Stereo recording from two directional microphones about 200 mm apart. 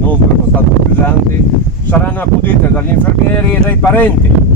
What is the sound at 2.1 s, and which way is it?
Speech, 10° left (ahead or behind).